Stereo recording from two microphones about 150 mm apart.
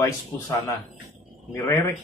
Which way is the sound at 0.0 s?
20° left (ahead or behind).